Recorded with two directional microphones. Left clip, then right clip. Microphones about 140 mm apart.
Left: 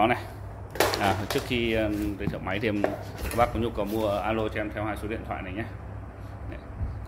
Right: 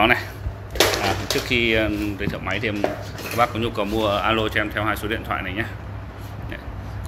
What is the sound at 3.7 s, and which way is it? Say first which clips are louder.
Speech: right 6 dB; 10° left (ahead or behind).